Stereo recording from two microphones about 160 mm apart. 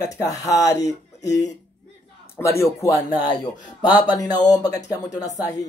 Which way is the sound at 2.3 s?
20° left (ahead or behind).